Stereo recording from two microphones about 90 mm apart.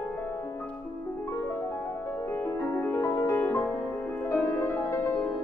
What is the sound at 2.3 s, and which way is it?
Music, 30° left (ahead or behind).